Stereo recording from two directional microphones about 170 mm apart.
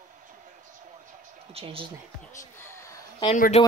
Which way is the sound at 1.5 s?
35° right (ahead or behind).